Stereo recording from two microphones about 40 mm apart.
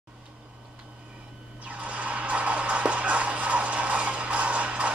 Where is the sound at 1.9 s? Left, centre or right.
Right.